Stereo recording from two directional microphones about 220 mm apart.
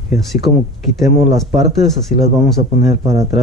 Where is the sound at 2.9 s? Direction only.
15° right (ahead or behind).